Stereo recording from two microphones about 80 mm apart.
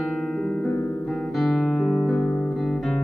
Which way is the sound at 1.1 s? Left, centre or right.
Centre.